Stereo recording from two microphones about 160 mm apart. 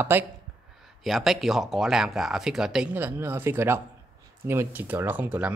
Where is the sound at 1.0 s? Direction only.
Centre (ahead or behind).